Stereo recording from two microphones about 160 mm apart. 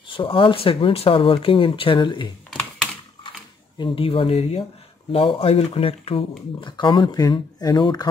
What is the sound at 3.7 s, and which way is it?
Speech, 30° left (ahead or behind).